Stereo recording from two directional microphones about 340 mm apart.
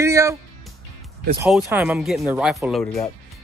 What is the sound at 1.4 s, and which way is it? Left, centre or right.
A man's voice, centre.